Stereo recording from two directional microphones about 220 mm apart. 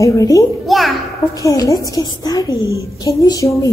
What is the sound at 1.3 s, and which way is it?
A woman's voice, 15° left (ahead or behind).